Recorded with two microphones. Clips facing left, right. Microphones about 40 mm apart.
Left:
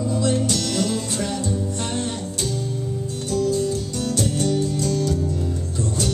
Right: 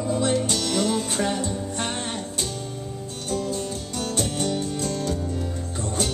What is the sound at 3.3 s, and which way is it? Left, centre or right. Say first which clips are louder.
Music: left 6 dB; right.